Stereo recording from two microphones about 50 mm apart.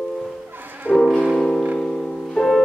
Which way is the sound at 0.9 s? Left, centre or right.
Centre.